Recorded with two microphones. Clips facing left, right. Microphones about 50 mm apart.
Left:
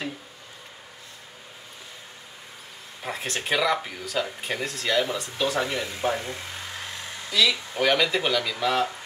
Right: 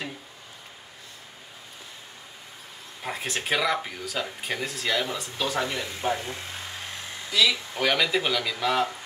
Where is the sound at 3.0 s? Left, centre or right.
Centre.